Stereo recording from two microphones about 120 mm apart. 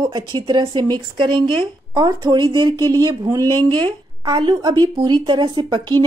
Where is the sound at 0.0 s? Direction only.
40° right (ahead or behind).